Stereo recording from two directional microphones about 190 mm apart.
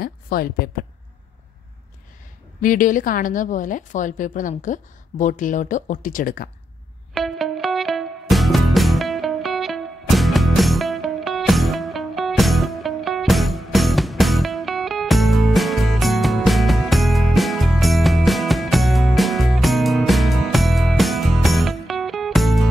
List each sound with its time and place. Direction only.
0.0 s a woman's voice: 50° left (ahead or behind)
2.6 s a woman's voice: 45° left (ahead or behind)
7.2 s music: centre (ahead or behind)